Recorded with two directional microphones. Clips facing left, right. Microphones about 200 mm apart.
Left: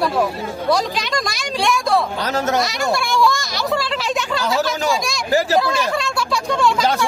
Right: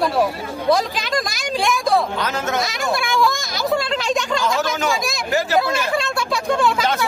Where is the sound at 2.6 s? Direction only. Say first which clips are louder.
Left 2 dB; centre (ahead or behind).